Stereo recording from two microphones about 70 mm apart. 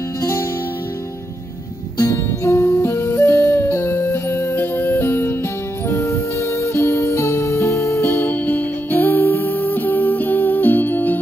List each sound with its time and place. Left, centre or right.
0.2 s music: left
2.0 s music: left
5.9 s music: left